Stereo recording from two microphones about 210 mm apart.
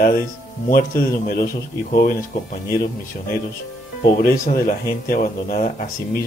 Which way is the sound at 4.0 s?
45° left (ahead or behind).